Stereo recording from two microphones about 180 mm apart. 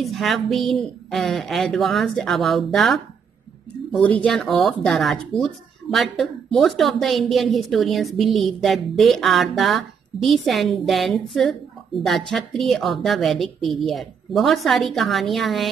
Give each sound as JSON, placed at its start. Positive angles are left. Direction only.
{"t": 0.0, "sound": "speech", "side_deg": 0}